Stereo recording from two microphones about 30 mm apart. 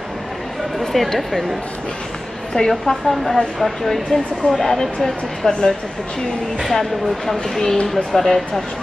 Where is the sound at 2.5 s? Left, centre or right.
Left.